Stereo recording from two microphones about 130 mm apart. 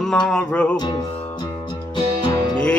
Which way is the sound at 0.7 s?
35° left (ahead or behind).